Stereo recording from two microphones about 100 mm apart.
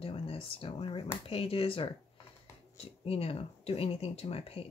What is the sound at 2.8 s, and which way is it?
Speech, 80° left.